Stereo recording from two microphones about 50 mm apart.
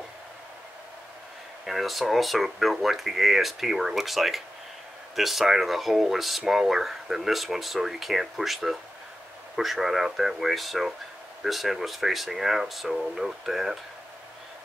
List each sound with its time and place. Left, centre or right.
1.7 s speech: centre